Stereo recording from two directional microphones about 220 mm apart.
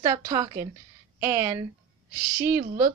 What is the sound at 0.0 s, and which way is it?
Speech, 15° right (ahead or behind).